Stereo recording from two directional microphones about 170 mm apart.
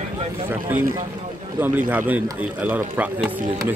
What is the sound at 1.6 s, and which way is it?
Speech, 10° right (ahead or behind).